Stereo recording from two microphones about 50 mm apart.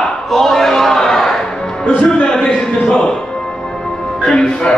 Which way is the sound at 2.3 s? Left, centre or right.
Centre.